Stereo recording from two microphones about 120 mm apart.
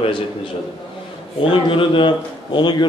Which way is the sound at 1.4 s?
50° left (ahead or behind).